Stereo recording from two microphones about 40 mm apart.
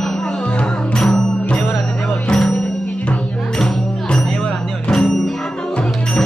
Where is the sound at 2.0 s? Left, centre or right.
Left.